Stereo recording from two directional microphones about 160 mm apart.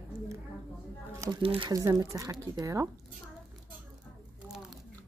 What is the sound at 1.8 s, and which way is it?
A woman's voice, 20° right (ahead or behind).